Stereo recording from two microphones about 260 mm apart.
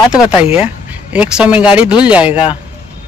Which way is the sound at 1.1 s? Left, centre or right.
Centre.